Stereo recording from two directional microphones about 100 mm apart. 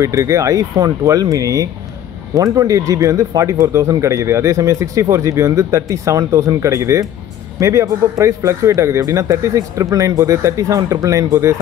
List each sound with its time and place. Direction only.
0.0 s speech: 30° right (ahead or behind)